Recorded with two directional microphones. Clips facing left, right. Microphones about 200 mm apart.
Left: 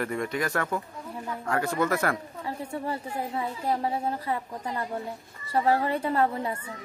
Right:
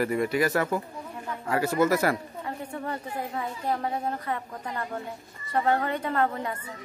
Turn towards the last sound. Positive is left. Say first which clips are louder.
# left 1 dB
turn(degrees=30)  # may be behind; listen again after turning